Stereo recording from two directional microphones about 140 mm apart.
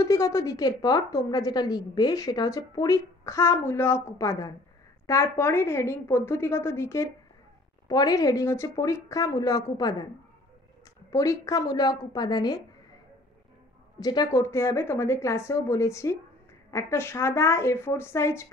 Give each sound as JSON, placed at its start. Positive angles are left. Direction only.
{"t": 0.0, "sound": "a woman's voice", "side_deg": 25}
{"t": 11.1, "sound": "a woman's voice", "side_deg": 25}
{"t": 13.9, "sound": "a woman's voice", "side_deg": 30}